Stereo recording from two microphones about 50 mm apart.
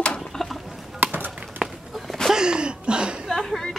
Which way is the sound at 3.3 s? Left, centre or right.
Centre.